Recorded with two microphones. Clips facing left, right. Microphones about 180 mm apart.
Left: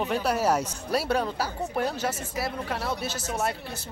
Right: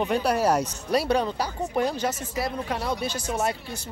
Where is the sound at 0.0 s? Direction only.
5° left (ahead or behind).